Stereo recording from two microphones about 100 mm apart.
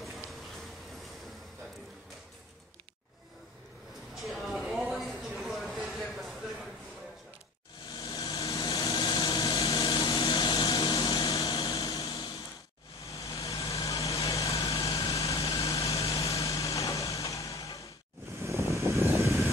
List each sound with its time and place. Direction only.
4.1 s a sound: centre (ahead or behind)
8.0 s vehicle: 35° left (ahead or behind)
18.4 s vehicle: 30° right (ahead or behind)